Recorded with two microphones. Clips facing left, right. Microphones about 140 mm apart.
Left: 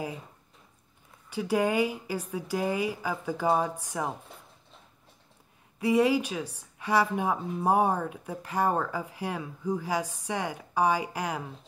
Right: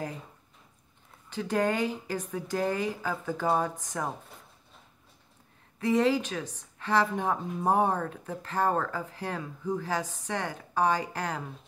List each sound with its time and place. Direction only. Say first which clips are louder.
1.3 s speech: left 2 dB; 10° left (ahead or behind)
5.8 s speech: left 1 dB; 10° left (ahead or behind)